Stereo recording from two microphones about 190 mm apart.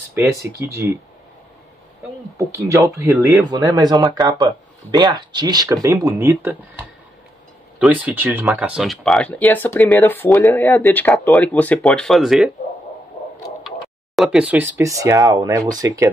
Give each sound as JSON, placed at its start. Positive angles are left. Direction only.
{"t": 0.1, "sound": "speech", "side_deg": -15}
{"t": 2.3, "sound": "speech", "side_deg": -15}
{"t": 7.8, "sound": "speech", "side_deg": -10}
{"t": 13.7, "sound": "speech", "side_deg": 0}